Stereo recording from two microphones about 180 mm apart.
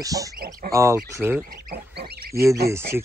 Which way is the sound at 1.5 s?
60° right (ahead or behind).